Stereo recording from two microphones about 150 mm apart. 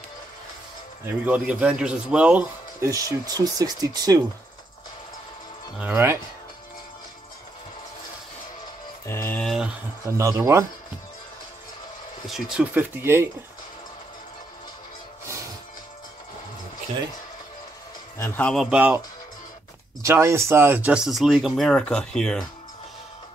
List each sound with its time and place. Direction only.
1.0 s speech: 10° right (ahead or behind)
2.8 s speech: 20° right (ahead or behind)
5.8 s speech: 15° right (ahead or behind)
9.0 s a sound: 15° left (ahead or behind)
9.4 s a sound: centre (ahead or behind)
10.0 s speech: 20° right (ahead or behind)
12.3 s speech: 5° right (ahead or behind)
13.0 s speech: 15° right (ahead or behind)
18.1 s a man's voice: 15° left (ahead or behind)
18.5 s speech: 5° right (ahead or behind)
20.0 s speech: 20° right (ahead or behind); by 22.5 s 5° left (ahead or behind)